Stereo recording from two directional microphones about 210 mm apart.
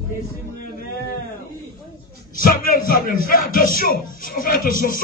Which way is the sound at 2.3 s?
40° left (ahead or behind).